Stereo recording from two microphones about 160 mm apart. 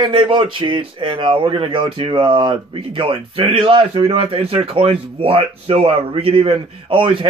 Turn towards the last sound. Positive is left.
turn(degrees=-35)  # may be behind; listen again after turning